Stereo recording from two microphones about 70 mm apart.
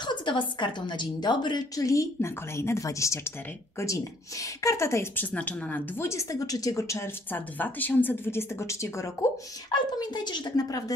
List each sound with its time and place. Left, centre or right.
0.0 s a sound: left
0.8 s speech: left
1.9 s a woman's voice: left
4.6 s a woman's voice: left
5.1 s speech: left
5.9 s a woman's voice: left
7.3 s speech: left
9.7 s a woman's voice: left